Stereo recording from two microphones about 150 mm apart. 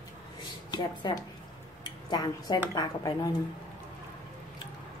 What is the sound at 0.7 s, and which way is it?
Speech, 30° left (ahead or behind).